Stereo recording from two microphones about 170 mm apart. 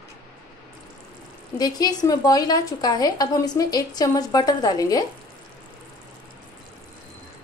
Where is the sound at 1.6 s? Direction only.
25° left (ahead or behind).